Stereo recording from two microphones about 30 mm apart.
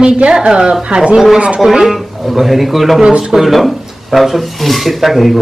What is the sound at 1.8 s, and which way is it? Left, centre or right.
Speech, centre.